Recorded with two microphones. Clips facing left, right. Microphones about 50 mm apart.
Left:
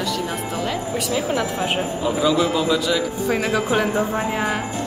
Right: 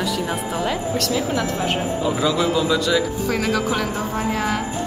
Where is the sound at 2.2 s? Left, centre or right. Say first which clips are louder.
Left 2 dB; centre.